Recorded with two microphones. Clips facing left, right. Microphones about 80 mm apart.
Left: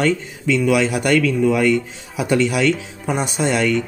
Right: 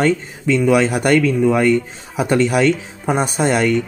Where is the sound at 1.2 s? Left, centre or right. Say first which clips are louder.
Right 2 dB; right.